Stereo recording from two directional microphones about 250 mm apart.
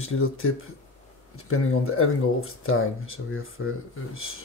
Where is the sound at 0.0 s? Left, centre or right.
Left.